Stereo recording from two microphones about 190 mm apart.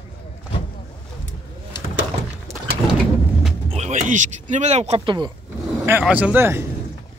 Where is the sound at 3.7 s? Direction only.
35° right (ahead or behind).